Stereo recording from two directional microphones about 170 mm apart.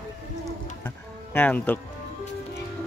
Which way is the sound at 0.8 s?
10° left (ahead or behind).